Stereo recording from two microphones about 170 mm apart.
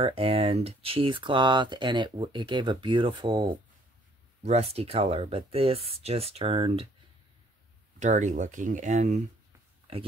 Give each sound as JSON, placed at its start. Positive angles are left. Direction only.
{"t": 0.0, "sound": "speech", "side_deg": -35}
{"t": 8.0, "sound": "speech", "side_deg": -45}
{"t": 9.9, "sound": "speech", "side_deg": -35}